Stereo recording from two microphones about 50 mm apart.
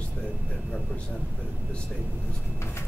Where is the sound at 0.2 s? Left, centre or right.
Centre.